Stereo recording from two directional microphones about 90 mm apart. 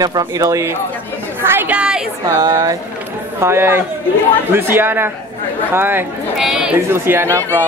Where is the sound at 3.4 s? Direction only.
30° right (ahead or behind).